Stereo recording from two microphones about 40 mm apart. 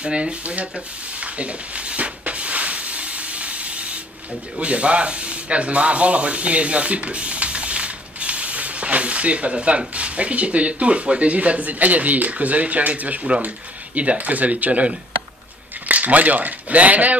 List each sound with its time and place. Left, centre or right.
0.0 s a sound: right
4.6 s speech: right
15.9 s speech: right